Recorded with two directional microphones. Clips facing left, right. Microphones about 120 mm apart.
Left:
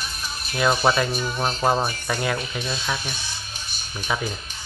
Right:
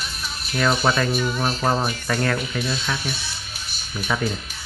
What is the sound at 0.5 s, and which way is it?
Speech, 15° left (ahead or behind).